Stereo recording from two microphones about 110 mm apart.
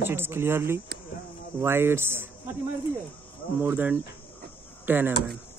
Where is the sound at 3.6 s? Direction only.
15° right (ahead or behind).